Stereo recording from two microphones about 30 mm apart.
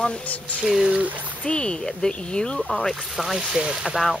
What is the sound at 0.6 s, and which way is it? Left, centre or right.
Speech, right.